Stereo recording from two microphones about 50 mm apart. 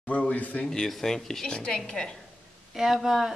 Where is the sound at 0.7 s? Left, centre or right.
Centre.